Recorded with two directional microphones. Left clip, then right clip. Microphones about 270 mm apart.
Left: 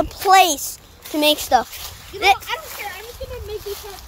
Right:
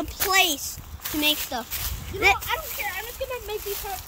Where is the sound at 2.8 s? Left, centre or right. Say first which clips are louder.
Even; centre.